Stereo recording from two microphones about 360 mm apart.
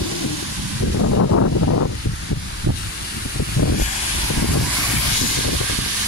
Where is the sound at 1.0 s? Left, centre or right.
Left.